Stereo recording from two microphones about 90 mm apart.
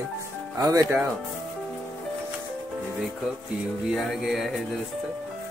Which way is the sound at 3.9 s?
Centre (ahead or behind).